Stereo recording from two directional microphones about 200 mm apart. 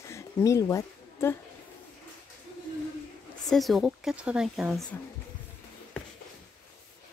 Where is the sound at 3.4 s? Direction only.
Centre (ahead or behind).